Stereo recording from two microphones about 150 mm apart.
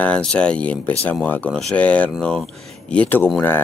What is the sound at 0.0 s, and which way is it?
Speech, 5° left (ahead or behind).